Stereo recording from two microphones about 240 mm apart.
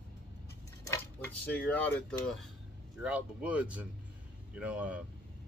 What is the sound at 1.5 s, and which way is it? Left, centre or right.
Speech, centre.